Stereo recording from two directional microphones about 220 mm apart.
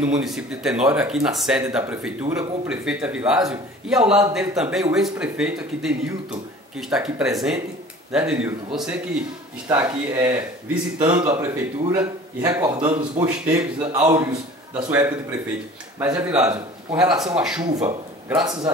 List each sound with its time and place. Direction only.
0.2 s speech: centre (ahead or behind)
18.4 s speech: 20° right (ahead or behind)